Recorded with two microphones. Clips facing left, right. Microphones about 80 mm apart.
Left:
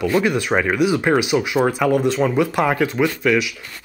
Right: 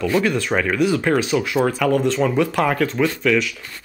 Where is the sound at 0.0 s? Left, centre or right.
Centre.